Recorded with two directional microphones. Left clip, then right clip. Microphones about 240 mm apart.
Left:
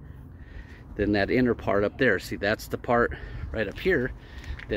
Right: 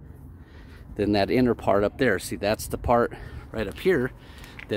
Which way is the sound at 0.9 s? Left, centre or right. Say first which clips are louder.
Right 2 dB; centre.